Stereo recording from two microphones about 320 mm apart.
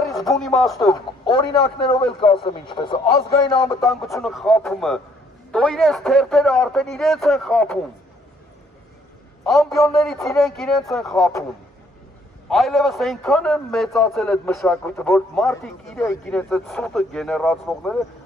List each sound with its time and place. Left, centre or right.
0.0 s speech: centre
0.9 s speech: centre
3.8 s a man's voice: centre
9.4 s a man's voice: centre
12.4 s a man's voice: centre